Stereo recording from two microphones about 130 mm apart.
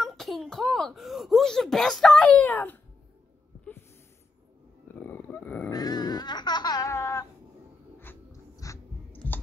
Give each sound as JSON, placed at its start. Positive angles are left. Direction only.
{"t": 0.0, "sound": "a child's voice", "side_deg": 0}
{"t": 4.9, "sound": "a sound", "side_deg": 15}
{"t": 5.7, "sound": "laughter", "side_deg": 30}
{"t": 8.0, "sound": "chewing", "side_deg": 20}